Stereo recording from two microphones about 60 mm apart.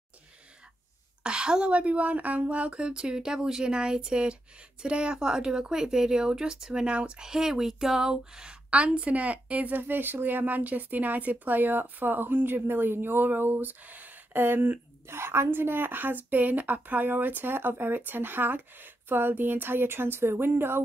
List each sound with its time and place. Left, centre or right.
1.2 s a woman's voice: centre; by 20.8 s right